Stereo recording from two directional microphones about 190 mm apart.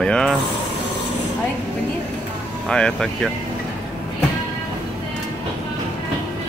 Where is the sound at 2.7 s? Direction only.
5° left (ahead or behind).